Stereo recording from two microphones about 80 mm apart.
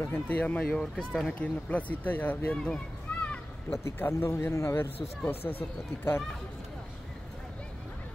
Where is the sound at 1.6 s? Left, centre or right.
Centre.